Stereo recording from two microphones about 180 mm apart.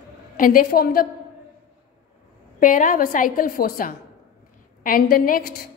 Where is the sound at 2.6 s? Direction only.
45° left (ahead or behind).